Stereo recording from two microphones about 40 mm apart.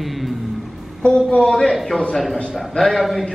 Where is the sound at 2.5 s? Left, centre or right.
Centre.